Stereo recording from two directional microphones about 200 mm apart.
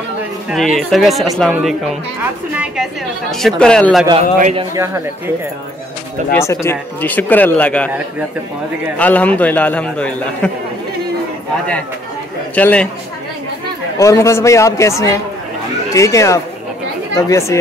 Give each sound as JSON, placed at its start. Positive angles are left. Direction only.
{"t": 0.7, "sound": "a woman's voice", "side_deg": 0}
{"t": 4.1, "sound": "a man's voice", "side_deg": -35}
{"t": 4.7, "sound": "speech", "side_deg": -10}
{"t": 6.3, "sound": "speech", "side_deg": 15}
{"t": 8.9, "sound": "speech", "side_deg": 5}
{"t": 12.5, "sound": "speech", "side_deg": 10}
{"t": 13.9, "sound": "speech", "side_deg": 15}